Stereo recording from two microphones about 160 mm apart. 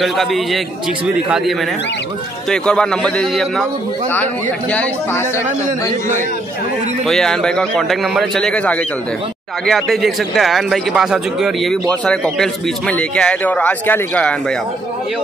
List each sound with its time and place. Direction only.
0.0 s speech: centre (ahead or behind)
2.5 s speech: 5° left (ahead or behind)
7.1 s speech: 5° left (ahead or behind)